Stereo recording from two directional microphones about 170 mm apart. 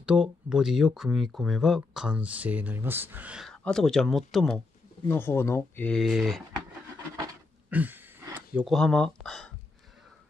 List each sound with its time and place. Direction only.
0.0 s speech: 5° right (ahead or behind)
5.0 s speech: 15° left (ahead or behind)
7.7 s a sound: 10° right (ahead or behind)
8.7 s speech: 5° left (ahead or behind)